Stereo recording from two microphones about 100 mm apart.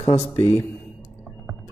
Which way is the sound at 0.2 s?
30° left (ahead or behind).